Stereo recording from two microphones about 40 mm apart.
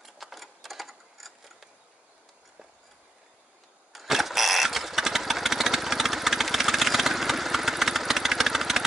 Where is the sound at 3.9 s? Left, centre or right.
Centre.